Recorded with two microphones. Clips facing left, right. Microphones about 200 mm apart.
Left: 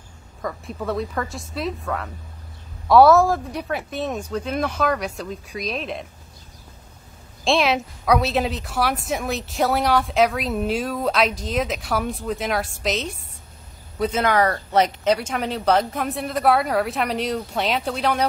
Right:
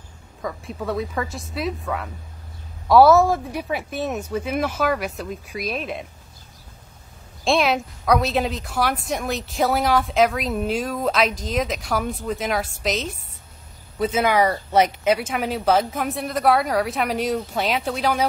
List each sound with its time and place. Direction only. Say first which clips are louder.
0.4 s speech: even; centre (ahead or behind)
7.4 s speech: even; centre (ahead or behind)